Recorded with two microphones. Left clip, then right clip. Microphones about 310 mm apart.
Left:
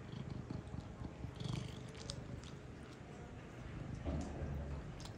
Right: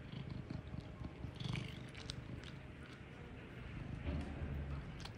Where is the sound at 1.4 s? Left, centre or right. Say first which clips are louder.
Right 1 dB; centre.